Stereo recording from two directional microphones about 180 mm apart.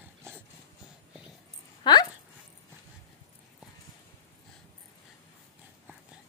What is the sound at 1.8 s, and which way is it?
Dog, 25° left (ahead or behind).